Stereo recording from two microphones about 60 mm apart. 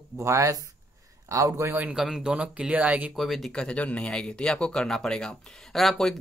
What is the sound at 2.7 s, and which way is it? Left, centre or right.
Speech, right.